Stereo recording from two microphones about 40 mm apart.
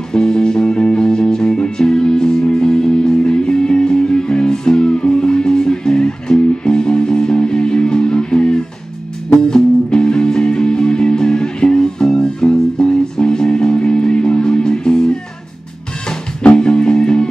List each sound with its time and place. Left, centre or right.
0.1 s music: centre
16.5 s music: centre